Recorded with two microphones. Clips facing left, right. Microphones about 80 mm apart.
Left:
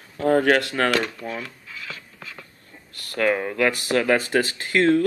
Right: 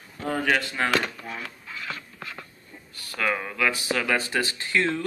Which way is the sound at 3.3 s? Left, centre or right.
Left.